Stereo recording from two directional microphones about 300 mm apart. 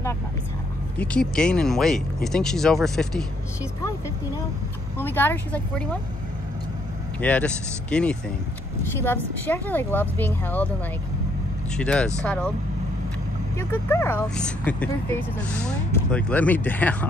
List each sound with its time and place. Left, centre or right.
0.9 s speech: centre
4.9 s speech: centre
7.2 s speech: centre
11.7 s speech: centre
13.6 s speech: centre